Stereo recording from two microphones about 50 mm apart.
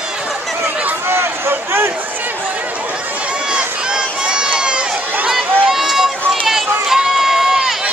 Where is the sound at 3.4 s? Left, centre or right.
Centre.